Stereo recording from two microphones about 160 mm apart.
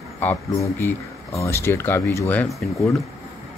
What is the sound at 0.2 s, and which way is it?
Speech, 15° left (ahead or behind).